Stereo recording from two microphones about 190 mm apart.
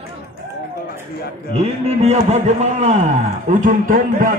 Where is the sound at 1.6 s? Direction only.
35° right (ahead or behind).